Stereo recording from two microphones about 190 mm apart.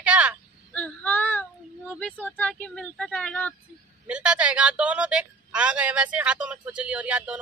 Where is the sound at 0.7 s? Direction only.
10° left (ahead or behind).